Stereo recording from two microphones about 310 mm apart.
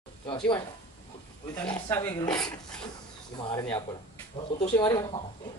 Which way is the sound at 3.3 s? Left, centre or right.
Centre.